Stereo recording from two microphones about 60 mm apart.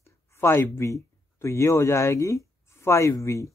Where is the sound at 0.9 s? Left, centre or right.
Left.